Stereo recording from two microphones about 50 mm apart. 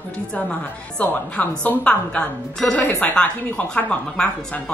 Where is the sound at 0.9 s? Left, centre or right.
Left.